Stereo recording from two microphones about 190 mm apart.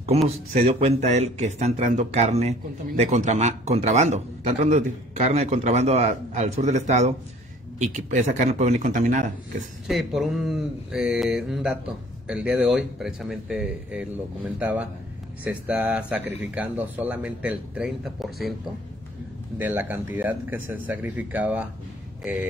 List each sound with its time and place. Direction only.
0.0 s a man's voice: 35° right (ahead or behind)
9.8 s speech: centre (ahead or behind)
19.6 s speech: 10° right (ahead or behind)